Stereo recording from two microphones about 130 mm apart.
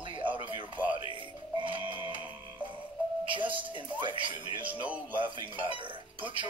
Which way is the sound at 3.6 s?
40° right (ahead or behind).